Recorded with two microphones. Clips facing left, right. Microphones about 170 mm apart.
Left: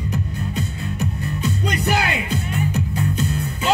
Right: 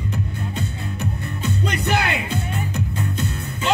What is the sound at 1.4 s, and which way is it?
Music, 35° left (ahead or behind).